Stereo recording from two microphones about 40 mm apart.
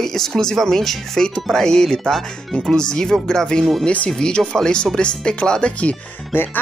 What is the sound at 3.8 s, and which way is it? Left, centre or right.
Speech, left.